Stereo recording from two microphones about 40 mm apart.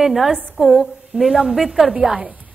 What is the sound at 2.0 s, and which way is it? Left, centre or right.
Speech, centre.